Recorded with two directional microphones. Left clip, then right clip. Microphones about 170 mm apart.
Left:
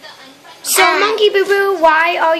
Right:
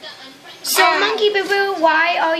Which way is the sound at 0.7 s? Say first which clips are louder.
Left 3 dB; 35° left (ahead or behind).